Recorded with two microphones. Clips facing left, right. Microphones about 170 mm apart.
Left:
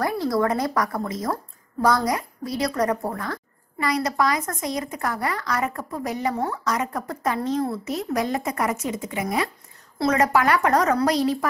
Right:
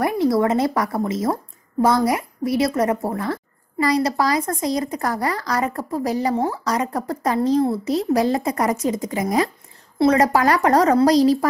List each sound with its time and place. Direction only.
0.0 s a woman's voice: 20° right (ahead or behind)